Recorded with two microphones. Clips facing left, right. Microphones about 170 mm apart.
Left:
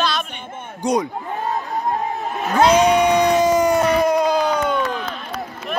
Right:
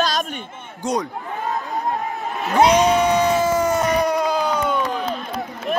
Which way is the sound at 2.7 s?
10° left (ahead or behind).